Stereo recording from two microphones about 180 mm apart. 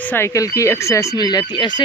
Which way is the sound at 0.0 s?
10° left (ahead or behind).